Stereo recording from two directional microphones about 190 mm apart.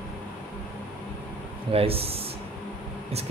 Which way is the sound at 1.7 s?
30° right (ahead or behind).